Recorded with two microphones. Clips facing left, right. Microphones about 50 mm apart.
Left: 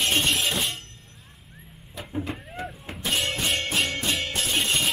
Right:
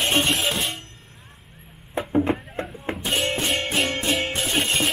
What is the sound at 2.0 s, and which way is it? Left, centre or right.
Music, right.